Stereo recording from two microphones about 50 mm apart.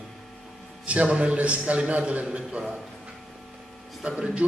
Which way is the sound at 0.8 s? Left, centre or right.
Right.